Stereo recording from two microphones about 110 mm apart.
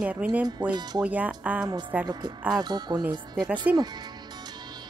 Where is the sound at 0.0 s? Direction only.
10° right (ahead or behind).